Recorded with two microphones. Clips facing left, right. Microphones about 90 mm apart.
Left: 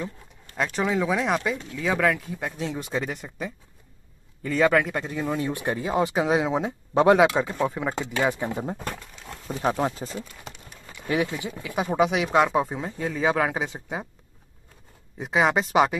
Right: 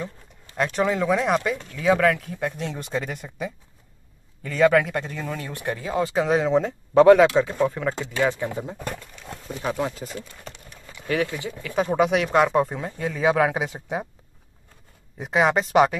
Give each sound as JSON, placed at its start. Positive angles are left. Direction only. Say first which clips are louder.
{"t": 0.6, "sound": "speech", "louder": "right 2 dB", "side_deg": 0}
{"t": 5.2, "sound": "speech", "louder": "left 3 dB", "side_deg": 20}
{"t": 6.2, "sound": "speech", "louder": "right 3 dB", "side_deg": 5}
{"t": 7.0, "sound": "speech", "louder": "right 4 dB", "side_deg": 20}
{"t": 9.6, "sound": "speech", "louder": "left 2 dB", "side_deg": 35}
{"t": 11.1, "sound": "speech", "louder": "right 1 dB", "side_deg": 20}
{"t": 11.8, "sound": "speech", "louder": "right 2 dB", "side_deg": 0}
{"t": 15.1, "sound": "speech", "louder": "right 1 dB", "side_deg": 0}